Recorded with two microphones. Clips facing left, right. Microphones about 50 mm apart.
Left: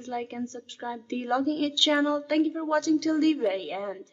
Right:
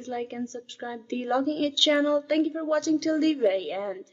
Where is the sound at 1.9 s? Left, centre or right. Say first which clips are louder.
Right 2 dB; centre.